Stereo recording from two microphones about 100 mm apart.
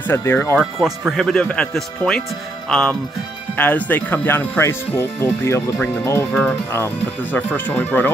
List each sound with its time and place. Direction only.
0.1 s speech: 20° left (ahead or behind)
0.6 s speech: centre (ahead or behind); by 6.2 s 25° left (ahead or behind)
7.3 s speech: 20° left (ahead or behind)